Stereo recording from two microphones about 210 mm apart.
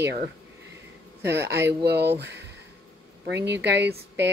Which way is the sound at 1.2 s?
50° right (ahead or behind).